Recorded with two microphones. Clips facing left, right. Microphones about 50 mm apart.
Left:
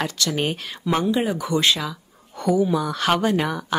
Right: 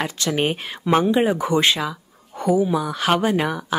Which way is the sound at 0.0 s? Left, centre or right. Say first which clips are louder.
Right 2 dB; right.